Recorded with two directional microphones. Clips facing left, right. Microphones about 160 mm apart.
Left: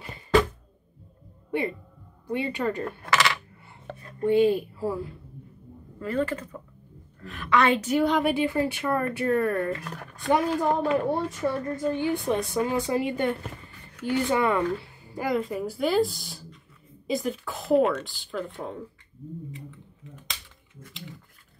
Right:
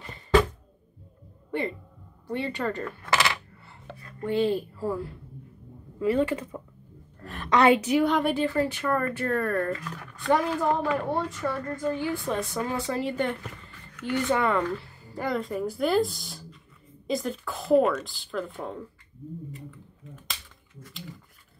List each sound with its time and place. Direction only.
2.2 s a woman's voice: 10° left (ahead or behind)
4.0 s speech: 20° left (ahead or behind)
5.9 s speech: 10° right (ahead or behind)
7.2 s a sound: 40° right (ahead or behind)
7.7 s a woman's voice: 5° right (ahead or behind); by 9.7 s 15° left (ahead or behind)
9.8 s speech: 40° left (ahead or behind)
10.2 s a woman's voice: 25° left (ahead or behind)
13.9 s speech: 30° left (ahead or behind)
14.3 s a woman's voice: 10° left (ahead or behind)
19.5 s typing: centre (ahead or behind)